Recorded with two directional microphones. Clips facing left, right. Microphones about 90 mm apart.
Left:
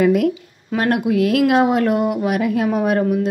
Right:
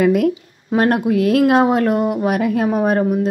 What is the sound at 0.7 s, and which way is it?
Speech, 35° right (ahead or behind).